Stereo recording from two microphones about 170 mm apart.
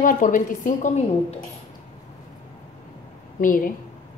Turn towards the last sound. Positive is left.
turn(degrees=55)  # may be behind; listen again after turning